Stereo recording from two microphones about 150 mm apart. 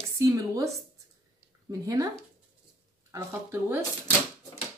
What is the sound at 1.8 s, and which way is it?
Speech, 25° right (ahead or behind).